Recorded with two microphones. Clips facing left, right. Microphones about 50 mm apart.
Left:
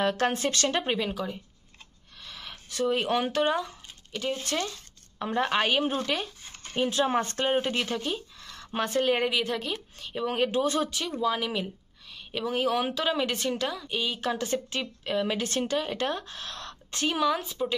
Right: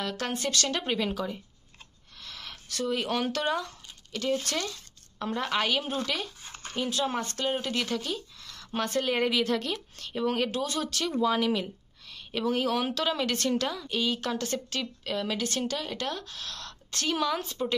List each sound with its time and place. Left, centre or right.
0.0 s speech: left
0.8 s speech: centre
2.1 s a sound: centre
2.7 s speech: left
10.9 s speech: centre
17.2 s a woman's voice: centre